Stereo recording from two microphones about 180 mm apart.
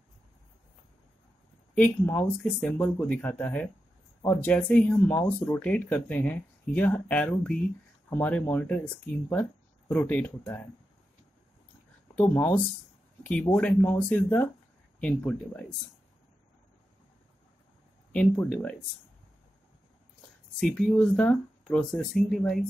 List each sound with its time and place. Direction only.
1.8 s speech: 10° left (ahead or behind)
12.2 s speech: 10° left (ahead or behind)
18.1 s speech: 10° left (ahead or behind)
20.6 s speech: 5° left (ahead or behind)